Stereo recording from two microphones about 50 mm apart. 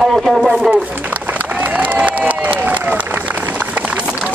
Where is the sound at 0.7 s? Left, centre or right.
Right.